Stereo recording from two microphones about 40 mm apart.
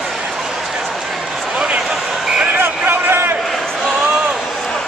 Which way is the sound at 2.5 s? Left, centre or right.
Right.